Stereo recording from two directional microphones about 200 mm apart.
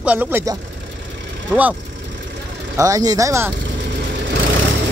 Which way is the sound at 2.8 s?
15° right (ahead or behind).